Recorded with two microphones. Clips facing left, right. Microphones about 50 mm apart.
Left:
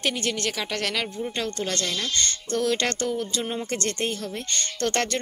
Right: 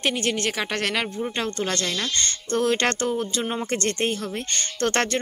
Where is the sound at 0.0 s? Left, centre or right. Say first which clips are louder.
Right 2 dB; right.